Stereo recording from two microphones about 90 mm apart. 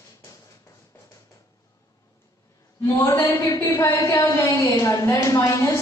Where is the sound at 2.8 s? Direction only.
25° left (ahead or behind).